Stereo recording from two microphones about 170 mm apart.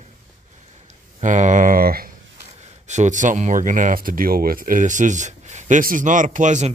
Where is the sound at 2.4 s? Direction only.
40° right (ahead or behind).